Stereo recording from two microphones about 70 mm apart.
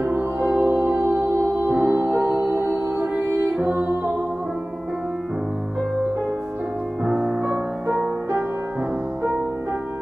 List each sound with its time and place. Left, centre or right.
0.4 s music: centre
7.1 s music: centre